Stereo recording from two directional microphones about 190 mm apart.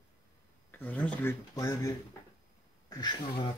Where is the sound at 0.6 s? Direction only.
10° left (ahead or behind).